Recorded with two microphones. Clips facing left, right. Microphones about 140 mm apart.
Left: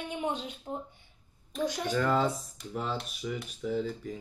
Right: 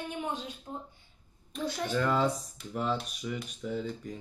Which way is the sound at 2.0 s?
Centre (ahead or behind).